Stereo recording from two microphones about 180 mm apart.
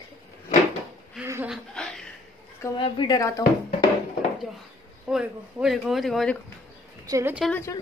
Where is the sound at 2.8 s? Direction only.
25° left (ahead or behind).